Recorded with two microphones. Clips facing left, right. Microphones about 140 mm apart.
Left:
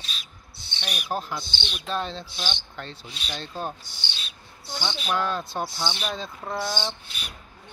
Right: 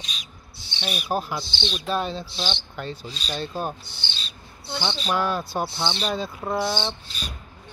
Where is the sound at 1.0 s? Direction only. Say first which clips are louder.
Right 3 dB; 10° right (ahead or behind).